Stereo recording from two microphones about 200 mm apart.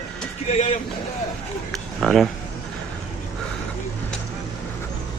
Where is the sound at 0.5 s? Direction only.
35° left (ahead or behind).